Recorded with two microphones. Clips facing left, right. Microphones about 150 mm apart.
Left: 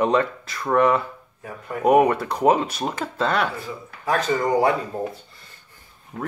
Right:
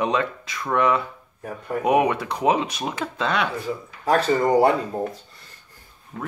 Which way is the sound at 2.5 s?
10° right (ahead or behind).